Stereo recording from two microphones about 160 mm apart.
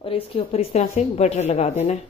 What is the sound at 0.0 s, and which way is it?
A woman's voice, 35° left (ahead or behind).